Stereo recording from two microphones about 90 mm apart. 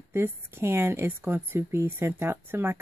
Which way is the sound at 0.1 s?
25° right (ahead or behind).